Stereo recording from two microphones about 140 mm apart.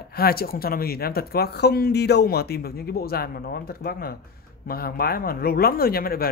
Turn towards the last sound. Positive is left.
turn(degrees=90)